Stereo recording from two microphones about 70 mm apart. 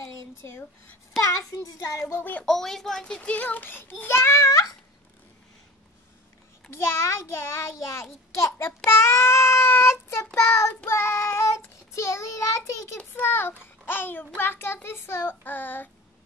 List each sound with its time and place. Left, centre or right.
1.8 s speech: left
2.1 s a child's voice: left
2.4 s a child's voice: centre; by 4.7 s left
6.7 s a child's voice: left
10.9 s child singing: left
13.1 s a child's voice: left